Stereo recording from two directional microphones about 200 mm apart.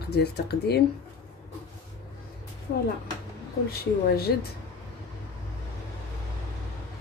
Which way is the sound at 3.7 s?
50° left (ahead or behind).